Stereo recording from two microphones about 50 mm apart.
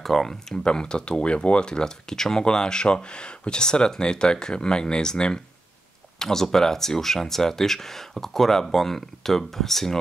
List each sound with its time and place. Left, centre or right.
0.0 s speech: centre